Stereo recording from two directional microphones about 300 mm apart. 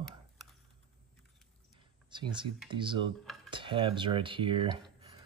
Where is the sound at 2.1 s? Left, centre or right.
Centre.